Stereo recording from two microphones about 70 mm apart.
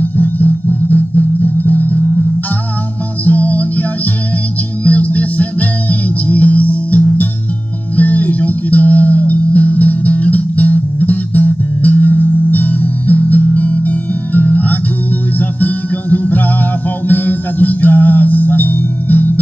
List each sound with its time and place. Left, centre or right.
0.2 s music: left
3.3 s music: left
4.8 s music: left